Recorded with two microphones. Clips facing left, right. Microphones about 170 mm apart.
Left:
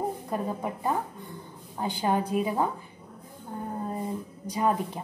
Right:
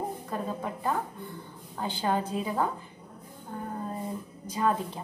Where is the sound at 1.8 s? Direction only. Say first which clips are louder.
Left 2 dB; 15° left (ahead or behind).